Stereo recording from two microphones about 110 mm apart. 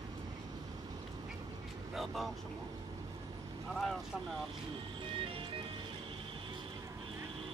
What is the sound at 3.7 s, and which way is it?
Speech, centre (ahead or behind).